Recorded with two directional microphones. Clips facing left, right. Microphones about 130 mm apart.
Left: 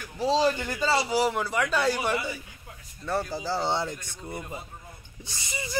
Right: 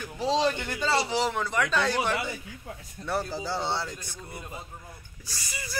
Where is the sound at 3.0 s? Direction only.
65° right (ahead or behind).